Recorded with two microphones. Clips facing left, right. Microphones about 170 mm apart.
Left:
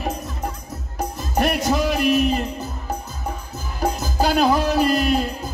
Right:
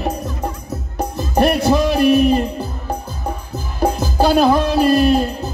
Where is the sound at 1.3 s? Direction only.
30° right (ahead or behind).